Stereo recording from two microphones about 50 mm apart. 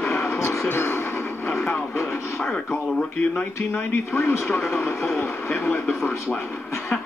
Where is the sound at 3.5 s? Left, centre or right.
Left.